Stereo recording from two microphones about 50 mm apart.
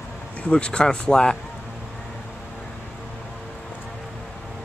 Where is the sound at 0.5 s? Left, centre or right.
Centre.